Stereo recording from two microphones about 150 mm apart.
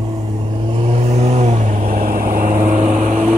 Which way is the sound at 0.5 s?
35° right (ahead or behind).